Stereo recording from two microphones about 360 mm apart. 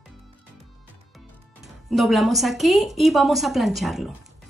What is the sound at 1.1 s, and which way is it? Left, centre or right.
Speech, centre.